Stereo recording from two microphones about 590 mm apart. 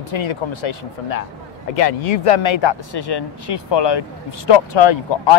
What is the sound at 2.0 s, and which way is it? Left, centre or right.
Speech, left.